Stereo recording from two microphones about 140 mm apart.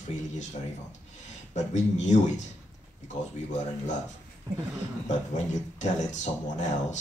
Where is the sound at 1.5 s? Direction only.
60° left (ahead or behind).